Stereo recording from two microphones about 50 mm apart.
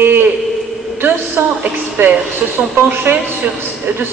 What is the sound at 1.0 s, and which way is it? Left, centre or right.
A woman's voice, right.